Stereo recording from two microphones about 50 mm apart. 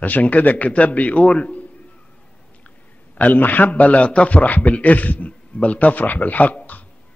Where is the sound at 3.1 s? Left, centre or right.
Left.